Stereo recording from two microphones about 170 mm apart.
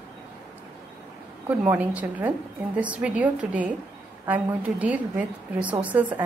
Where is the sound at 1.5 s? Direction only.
10° right (ahead or behind).